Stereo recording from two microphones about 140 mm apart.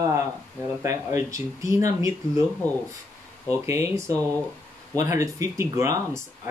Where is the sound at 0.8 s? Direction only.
20° right (ahead or behind).